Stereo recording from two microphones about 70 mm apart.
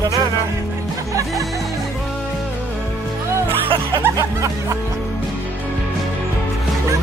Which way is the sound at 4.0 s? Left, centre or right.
Right.